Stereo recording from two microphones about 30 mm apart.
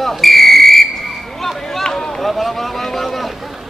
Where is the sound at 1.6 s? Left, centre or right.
Centre.